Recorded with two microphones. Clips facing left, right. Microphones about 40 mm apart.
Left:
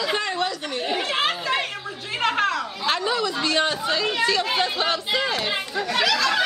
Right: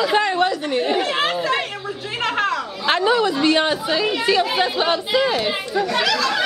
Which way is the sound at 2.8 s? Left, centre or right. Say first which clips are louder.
Right 7 dB; right.